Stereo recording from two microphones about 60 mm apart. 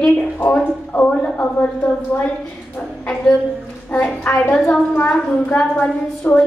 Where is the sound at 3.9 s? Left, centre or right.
Left.